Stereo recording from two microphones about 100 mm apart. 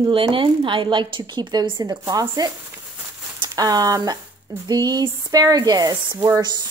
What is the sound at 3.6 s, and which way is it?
Sanding, 40° right (ahead or behind).